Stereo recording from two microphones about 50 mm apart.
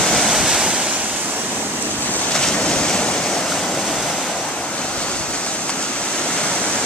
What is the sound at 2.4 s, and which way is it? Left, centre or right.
Waves, centre.